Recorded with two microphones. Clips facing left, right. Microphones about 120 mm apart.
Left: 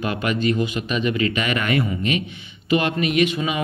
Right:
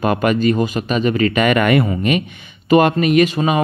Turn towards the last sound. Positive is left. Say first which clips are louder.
# right 6 dB
turn(degrees=-40)  # may be behind; listen again after turning